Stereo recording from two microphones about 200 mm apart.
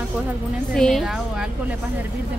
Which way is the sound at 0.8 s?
Centre (ahead or behind).